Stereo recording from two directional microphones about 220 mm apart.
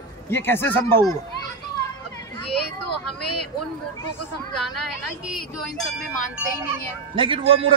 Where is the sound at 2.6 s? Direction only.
90° left.